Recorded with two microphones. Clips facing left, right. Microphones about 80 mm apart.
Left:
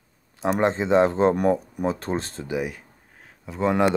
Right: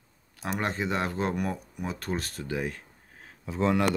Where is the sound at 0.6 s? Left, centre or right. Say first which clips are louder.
Left 11 dB; left.